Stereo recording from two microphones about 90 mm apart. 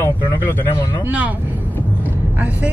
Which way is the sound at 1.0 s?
15° right (ahead or behind).